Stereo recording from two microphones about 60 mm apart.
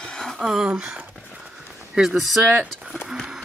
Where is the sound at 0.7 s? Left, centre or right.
Centre.